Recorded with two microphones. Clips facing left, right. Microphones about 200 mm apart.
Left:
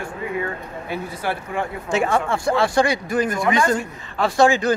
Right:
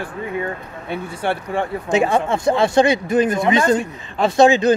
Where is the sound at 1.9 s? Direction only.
20° right (ahead or behind).